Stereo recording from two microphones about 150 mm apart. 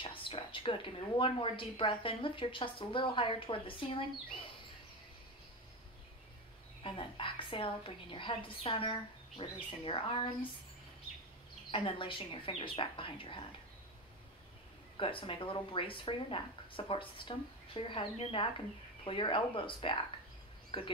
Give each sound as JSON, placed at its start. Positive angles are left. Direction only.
{"t": 0.0, "sound": "a woman's voice", "side_deg": 35}
{"t": 6.8, "sound": "a woman's voice", "side_deg": 35}
{"t": 11.7, "sound": "a woman's voice", "side_deg": 35}
{"t": 15.0, "sound": "a woman's voice", "side_deg": 35}